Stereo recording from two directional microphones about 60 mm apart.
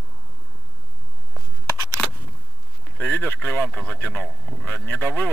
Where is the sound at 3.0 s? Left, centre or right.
Left.